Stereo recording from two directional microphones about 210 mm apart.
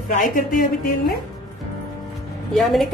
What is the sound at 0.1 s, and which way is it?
Speech, 40° left (ahead or behind).